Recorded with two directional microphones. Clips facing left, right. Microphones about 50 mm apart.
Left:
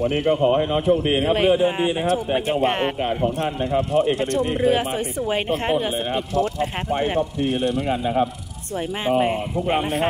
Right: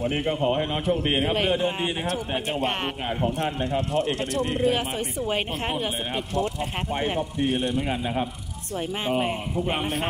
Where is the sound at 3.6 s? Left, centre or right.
Left.